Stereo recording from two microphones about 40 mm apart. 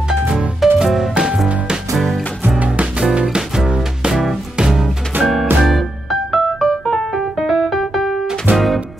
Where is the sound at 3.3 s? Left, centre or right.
Centre.